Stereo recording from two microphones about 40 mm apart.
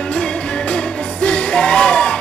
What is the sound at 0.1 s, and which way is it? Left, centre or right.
Music, left.